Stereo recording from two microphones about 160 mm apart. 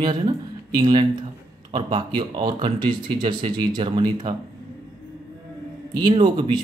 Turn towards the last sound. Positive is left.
turn(degrees=-30)  # may be behind; listen again after turning